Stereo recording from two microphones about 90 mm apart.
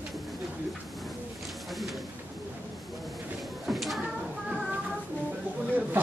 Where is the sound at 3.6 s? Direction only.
Centre (ahead or behind).